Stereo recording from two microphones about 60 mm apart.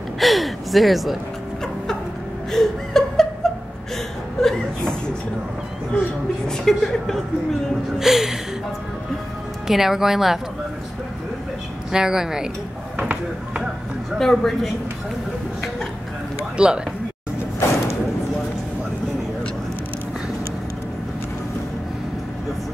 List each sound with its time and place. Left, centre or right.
0.2 s speech: centre
2.5 s chuckle: centre
5.9 s a sound: centre
8.0 s a sound: centre
9.7 s a woman's voice: centre
11.9 s a woman's voice: centre
13.1 s speech: right
14.1 s speech: centre
16.5 s speech: centre